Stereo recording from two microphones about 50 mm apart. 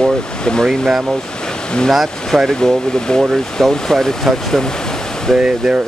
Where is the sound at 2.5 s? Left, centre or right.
Centre.